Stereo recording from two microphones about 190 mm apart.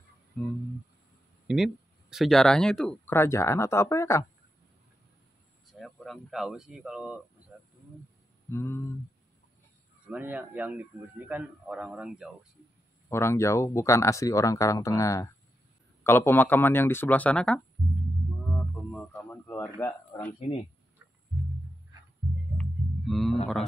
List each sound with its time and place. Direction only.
1.5 s speech: centre (ahead or behind); by 4.3 s 15° left (ahead or behind)
5.7 s speech: centre (ahead or behind)
8.5 s speech: 15° left (ahead or behind)
10.0 s a man's voice: 10° right (ahead or behind)
13.1 s speech: 15° left (ahead or behind)
19.1 s speech: 10° left (ahead or behind)
20.3 s speech: 30° left (ahead or behind)
22.6 s a sound: centre (ahead or behind)